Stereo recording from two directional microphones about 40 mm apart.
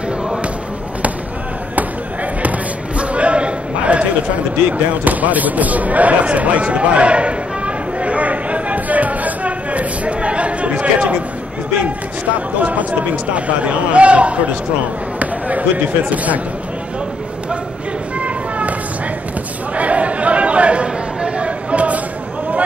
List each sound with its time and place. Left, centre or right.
3.0 s a sound: right
5.0 s basketball bounce: right
12.5 s a man's voice: right
13.9 s a man's voice: right
15.1 s basketball bounce: right
18.2 s a sound: right
19.7 s chatter: right